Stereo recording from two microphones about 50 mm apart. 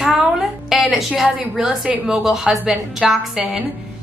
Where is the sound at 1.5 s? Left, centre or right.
Centre.